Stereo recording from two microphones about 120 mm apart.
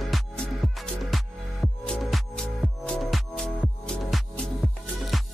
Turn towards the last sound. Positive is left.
turn(degrees=5)  # may be behind; listen again after turning